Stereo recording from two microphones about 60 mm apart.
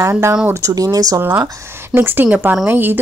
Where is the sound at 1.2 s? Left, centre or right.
Right.